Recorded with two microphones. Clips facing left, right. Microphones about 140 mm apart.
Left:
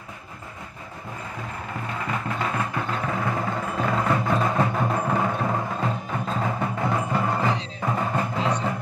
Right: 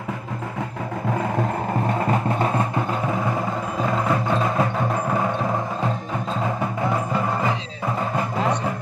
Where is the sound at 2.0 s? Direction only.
40° right (ahead or behind).